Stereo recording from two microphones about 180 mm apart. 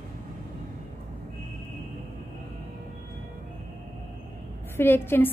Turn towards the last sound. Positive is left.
turn(degrees=10)  # may be behind; listen again after turning